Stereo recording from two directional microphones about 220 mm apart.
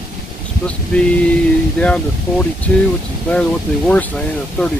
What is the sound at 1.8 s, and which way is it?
Speech, 5° left (ahead or behind).